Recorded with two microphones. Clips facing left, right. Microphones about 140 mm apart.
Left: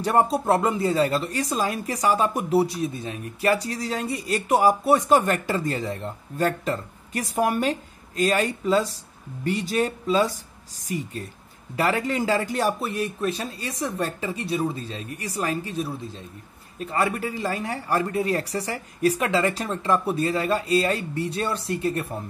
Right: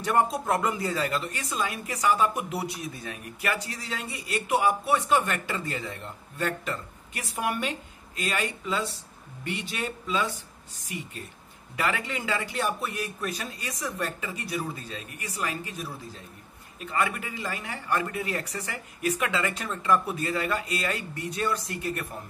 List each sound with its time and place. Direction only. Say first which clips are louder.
0.0 s speech: left 4 dB; 30° left (ahead or behind)